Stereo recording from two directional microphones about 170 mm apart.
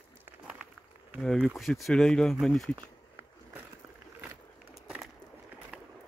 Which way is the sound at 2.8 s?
15° right (ahead or behind).